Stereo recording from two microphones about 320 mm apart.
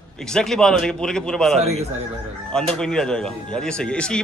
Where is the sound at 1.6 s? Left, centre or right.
Right.